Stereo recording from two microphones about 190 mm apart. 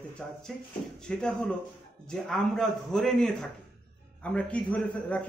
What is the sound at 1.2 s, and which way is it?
A man's voice, 5° left (ahead or behind).